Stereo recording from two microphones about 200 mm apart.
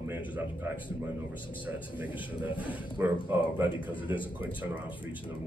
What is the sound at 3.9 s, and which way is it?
Speech, 25° left (ahead or behind).